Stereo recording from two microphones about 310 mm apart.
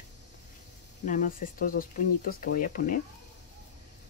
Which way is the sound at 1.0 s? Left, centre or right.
Left.